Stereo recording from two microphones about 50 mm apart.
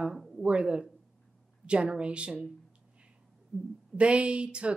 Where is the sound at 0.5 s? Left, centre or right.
Right.